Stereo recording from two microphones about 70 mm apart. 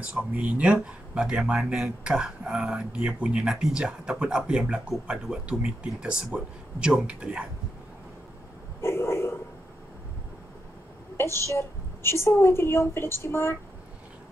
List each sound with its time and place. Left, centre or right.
0.0 s speech: centre
8.8 s a sound: left
11.1 s a woman's voice: left